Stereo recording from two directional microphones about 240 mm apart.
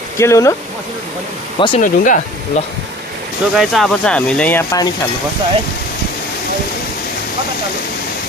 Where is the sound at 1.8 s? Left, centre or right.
Left.